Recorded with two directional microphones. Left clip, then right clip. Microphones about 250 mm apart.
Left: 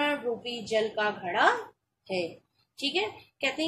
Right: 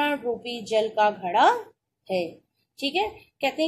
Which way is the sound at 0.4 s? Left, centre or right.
Right.